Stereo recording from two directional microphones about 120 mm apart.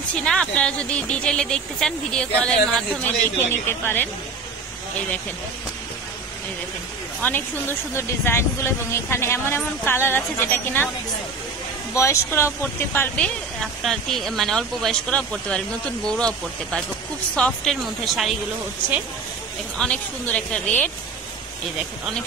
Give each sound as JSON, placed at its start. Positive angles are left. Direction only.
{"t": 0.1, "sound": "speech", "side_deg": 5}
{"t": 3.3, "sound": "speech", "side_deg": 15}
{"t": 7.2, "sound": "speech", "side_deg": 15}
{"t": 11.9, "sound": "speech", "side_deg": 25}
{"t": 13.2, "sound": "speech", "side_deg": 5}
{"t": 19.8, "sound": "speech", "side_deg": 10}